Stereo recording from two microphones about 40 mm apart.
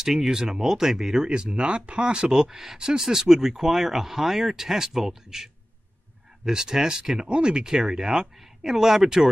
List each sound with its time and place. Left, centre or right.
0.0 s speech: centre
1.3 s speech: right